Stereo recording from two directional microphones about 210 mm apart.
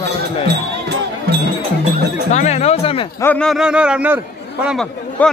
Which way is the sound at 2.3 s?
30° left (ahead or behind).